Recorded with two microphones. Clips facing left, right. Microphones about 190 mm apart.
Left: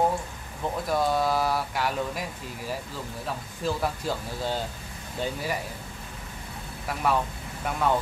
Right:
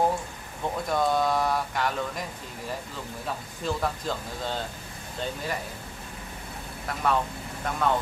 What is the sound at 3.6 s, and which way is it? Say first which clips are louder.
Speech: left 1 dB; 10° left (ahead or behind).